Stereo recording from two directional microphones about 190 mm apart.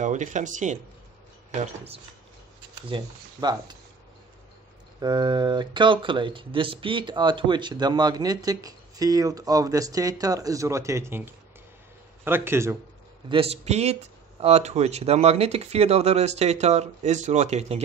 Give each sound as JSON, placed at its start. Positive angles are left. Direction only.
{"t": 0.0, "sound": "speech", "side_deg": -40}
{"t": 2.9, "sound": "speech", "side_deg": -20}
{"t": 5.0, "sound": "speech", "side_deg": -25}
{"t": 12.3, "sound": "speech", "side_deg": -10}
{"t": 13.3, "sound": "speech", "side_deg": -30}